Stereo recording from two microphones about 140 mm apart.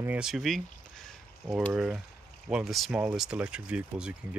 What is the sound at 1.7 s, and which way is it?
Speech, 5° right (ahead or behind).